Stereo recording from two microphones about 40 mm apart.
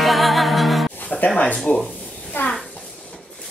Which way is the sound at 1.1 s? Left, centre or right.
Centre.